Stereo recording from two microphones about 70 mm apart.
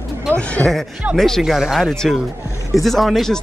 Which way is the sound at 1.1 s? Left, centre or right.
Centre.